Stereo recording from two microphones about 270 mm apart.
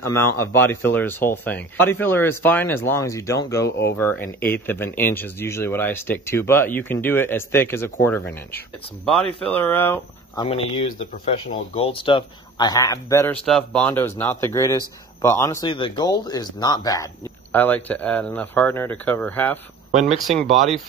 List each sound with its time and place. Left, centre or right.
0.4 s speech: centre